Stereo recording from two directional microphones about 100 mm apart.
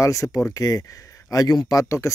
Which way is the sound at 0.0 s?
35° left (ahead or behind).